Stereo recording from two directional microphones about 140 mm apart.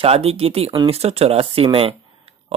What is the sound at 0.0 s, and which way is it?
Speech, 45° right (ahead or behind).